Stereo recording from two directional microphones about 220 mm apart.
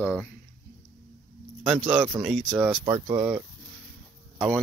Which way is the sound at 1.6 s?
5° right (ahead or behind).